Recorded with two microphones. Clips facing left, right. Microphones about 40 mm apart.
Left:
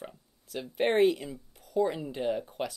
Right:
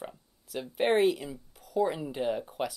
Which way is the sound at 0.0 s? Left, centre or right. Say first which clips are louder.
Right 2 dB; centre.